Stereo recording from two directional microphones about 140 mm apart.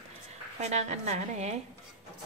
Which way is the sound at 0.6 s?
55° right (ahead or behind).